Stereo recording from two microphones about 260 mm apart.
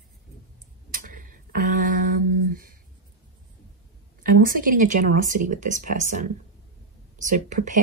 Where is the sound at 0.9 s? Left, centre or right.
Right.